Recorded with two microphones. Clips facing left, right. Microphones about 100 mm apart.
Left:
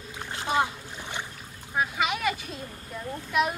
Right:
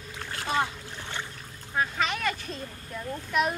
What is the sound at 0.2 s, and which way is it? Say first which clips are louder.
Boat: left 2 dB; 15° left (ahead or behind).